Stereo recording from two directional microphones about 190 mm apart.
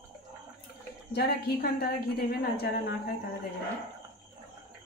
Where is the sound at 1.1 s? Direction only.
55° left (ahead or behind).